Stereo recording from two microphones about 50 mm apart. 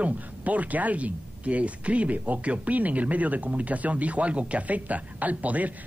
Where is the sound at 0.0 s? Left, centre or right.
Right.